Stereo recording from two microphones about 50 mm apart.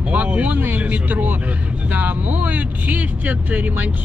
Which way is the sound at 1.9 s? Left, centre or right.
Right.